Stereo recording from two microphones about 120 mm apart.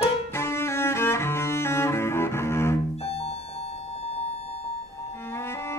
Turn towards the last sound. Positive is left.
turn(degrees=20)  # may be behind; listen again after turning